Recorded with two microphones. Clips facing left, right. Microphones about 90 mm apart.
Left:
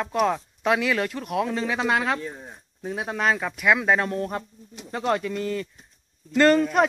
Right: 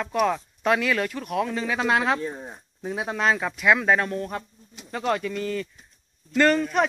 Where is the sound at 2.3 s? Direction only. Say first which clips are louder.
Right 4 dB; 40° right (ahead or behind).